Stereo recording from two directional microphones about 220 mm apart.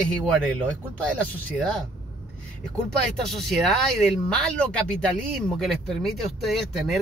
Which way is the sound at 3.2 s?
Centre (ahead or behind).